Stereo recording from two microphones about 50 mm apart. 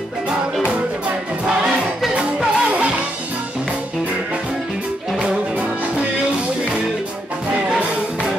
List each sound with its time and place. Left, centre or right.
2.1 s music: right